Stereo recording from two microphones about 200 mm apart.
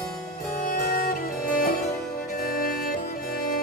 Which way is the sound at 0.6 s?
45° left (ahead or behind).